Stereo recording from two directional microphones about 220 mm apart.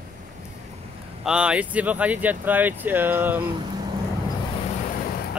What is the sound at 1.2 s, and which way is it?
Speech, 5° right (ahead or behind).